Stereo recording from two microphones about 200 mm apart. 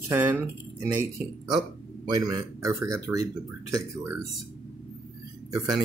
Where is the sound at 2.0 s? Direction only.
20° right (ahead or behind).